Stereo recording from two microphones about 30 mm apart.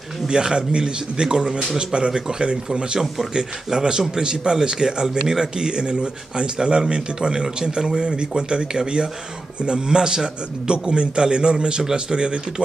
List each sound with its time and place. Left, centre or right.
0.3 s a man's voice: right
5.7 s a man's voice: right